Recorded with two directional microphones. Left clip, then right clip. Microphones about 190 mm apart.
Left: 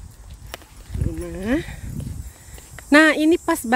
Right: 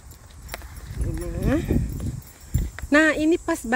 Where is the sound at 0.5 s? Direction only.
25° left (ahead or behind).